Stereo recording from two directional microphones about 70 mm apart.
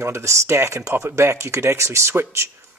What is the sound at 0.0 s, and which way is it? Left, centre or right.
Speech, right.